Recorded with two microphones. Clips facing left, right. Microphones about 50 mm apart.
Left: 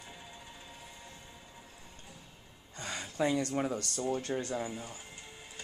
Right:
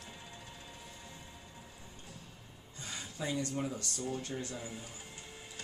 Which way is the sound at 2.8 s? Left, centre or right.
Left.